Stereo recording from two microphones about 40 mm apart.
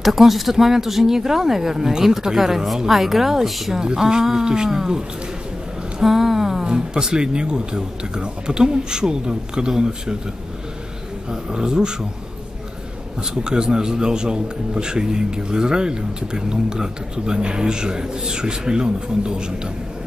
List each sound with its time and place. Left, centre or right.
0.0 s a woman's voice: centre
3.8 s speech: centre
5.9 s a sound: centre
6.6 s a man's voice: centre
11.2 s a man's voice: centre
13.2 s a man's voice: centre